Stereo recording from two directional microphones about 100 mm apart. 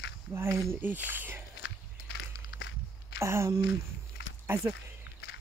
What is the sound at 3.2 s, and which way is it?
Speech, 25° right (ahead or behind).